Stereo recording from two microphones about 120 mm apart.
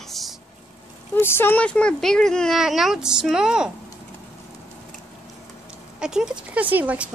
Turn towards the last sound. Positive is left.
turn(degrees=-15)  # may be behind; listen again after turning